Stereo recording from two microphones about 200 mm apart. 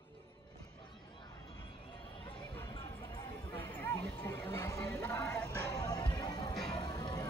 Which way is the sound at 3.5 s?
10° left (ahead or behind).